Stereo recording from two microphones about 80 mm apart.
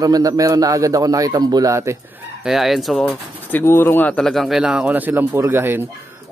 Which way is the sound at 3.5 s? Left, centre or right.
Left.